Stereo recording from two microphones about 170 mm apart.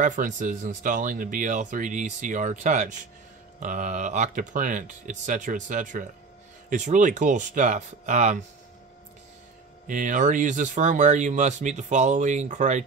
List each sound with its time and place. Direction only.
0.0 s speech: 50° right (ahead or behind)
9.8 s speech: 50° right (ahead or behind)